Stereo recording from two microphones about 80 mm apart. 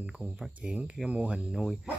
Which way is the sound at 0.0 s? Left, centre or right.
Centre.